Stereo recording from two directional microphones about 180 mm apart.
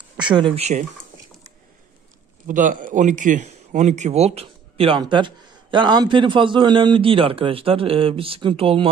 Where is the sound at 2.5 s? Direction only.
45° right (ahead or behind).